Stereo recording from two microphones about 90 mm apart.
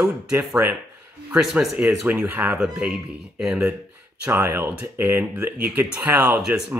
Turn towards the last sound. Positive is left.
turn(degrees=-10)  # may be behind; listen again after turning